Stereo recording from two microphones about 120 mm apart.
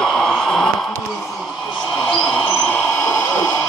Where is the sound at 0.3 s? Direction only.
5° left (ahead or behind).